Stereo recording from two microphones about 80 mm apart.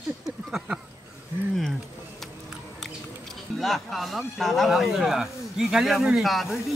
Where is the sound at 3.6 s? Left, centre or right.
Centre.